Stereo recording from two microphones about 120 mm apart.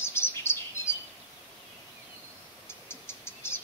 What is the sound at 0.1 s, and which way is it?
Chirp, 20° left (ahead or behind).